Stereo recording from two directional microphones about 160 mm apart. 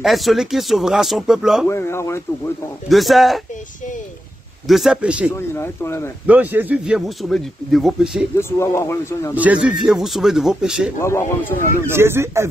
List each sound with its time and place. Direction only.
0.0 s speech: centre (ahead or behind)
1.7 s speech: 15° left (ahead or behind)
2.9 s speech: centre (ahead or behind)
4.6 s speech: centre (ahead or behind)
5.3 s speech: 15° left (ahead or behind)
6.2 s speech: 10° right (ahead or behind)
8.4 s speech: 15° left (ahead or behind)
9.3 s speech: 10° right (ahead or behind)
11.0 s speech: 15° left (ahead or behind)
11.9 s speech: 15° right (ahead or behind)